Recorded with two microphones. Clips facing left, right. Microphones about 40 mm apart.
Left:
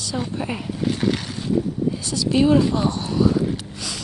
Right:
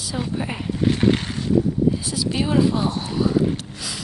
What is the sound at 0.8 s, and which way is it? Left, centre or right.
Speech, right.